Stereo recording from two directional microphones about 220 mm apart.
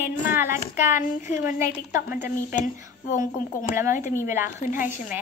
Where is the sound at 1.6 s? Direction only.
10° right (ahead or behind).